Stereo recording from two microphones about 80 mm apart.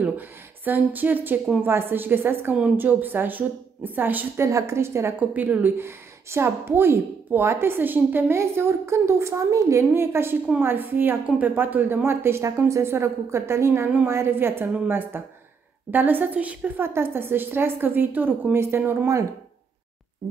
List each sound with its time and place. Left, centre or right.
0.7 s a woman's voice: right
4.4 s a woman's voice: right
5.3 s a woman's voice: right